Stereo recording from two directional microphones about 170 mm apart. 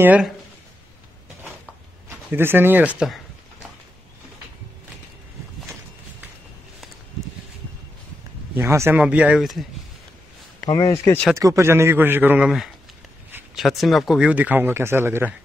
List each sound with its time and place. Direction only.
0.0 s speech: 10° right (ahead or behind)
2.3 s speech: 15° right (ahead or behind)
8.5 s speech: 15° right (ahead or behind)
10.7 s speech: 20° left (ahead or behind)
11.3 s speech: 15° right (ahead or behind)